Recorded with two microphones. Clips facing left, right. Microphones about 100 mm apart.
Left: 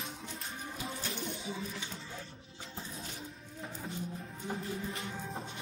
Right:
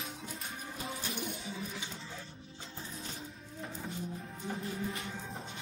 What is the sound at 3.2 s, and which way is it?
Music, centre (ahead or behind).